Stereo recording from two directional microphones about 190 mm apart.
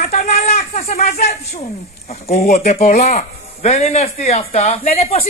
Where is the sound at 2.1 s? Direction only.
35° left (ahead or behind).